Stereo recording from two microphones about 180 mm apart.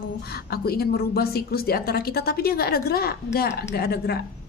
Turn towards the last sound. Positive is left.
turn(degrees=60)  # may be behind; listen again after turning